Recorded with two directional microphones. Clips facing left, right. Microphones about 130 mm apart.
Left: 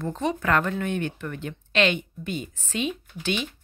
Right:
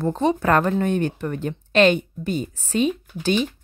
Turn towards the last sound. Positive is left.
turn(degrees=-40)  # may be behind; listen again after turning